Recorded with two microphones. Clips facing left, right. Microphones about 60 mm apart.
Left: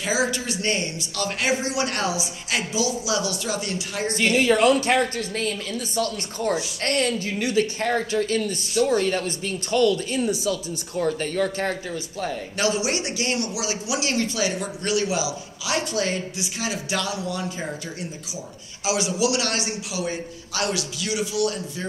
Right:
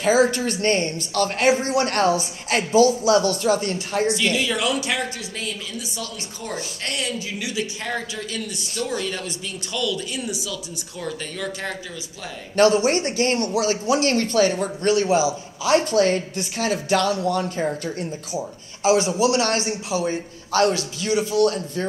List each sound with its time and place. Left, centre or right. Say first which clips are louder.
0.0 s speech: right 6 dB; right
4.1 s speech: left 3 dB; left
12.5 s speech: right 8 dB; right
18.9 s a man's voice: right 5 dB; right